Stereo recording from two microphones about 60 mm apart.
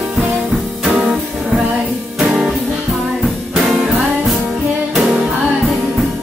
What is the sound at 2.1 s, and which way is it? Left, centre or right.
Music, centre.